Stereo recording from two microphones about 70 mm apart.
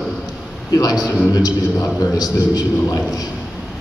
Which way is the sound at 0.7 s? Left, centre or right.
Left.